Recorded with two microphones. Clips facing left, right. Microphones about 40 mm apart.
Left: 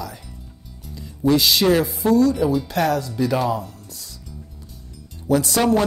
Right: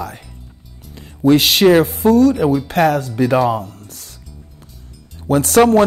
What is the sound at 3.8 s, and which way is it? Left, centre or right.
Music, right.